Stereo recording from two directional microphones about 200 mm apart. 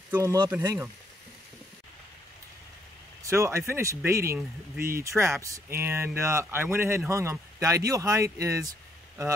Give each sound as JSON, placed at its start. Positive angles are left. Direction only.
{"t": 0.1, "sound": "speech", "side_deg": -15}
{"t": 3.3, "sound": "speech", "side_deg": -15}